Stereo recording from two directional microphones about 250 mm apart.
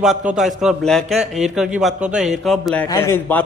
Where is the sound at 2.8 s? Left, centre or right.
Centre.